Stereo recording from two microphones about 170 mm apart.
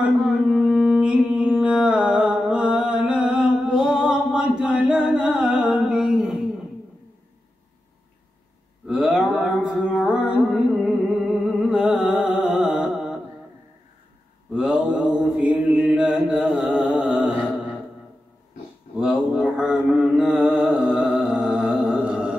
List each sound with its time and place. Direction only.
0.0 s mantra: centre (ahead or behind)
8.8 s a sound: centre (ahead or behind)
14.5 s mantra: centre (ahead or behind)
18.9 s mantra: centre (ahead or behind)